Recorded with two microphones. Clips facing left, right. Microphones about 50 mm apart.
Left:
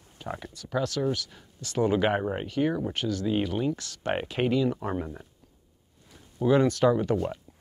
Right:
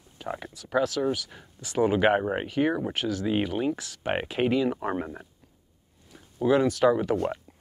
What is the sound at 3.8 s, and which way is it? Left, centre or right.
Speech, centre.